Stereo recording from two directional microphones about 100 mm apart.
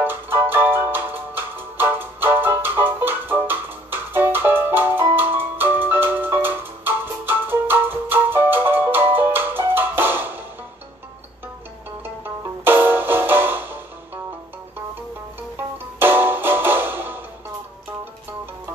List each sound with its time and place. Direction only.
0.0 s music: 20° right (ahead or behind)
12.6 s music: 20° right (ahead or behind)
15.5 s music: 20° right (ahead or behind)